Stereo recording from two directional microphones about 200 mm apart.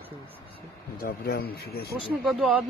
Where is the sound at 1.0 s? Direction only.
50° left (ahead or behind).